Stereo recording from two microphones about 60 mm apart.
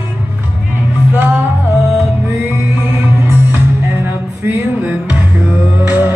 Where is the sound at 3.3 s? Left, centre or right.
Right.